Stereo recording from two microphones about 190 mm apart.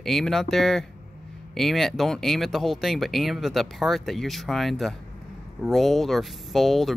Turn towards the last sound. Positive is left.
turn(degrees=0)  # may be behind; listen again after turning